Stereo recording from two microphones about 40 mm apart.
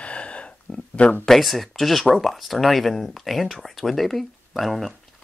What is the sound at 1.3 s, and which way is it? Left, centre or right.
A woman's voice, centre.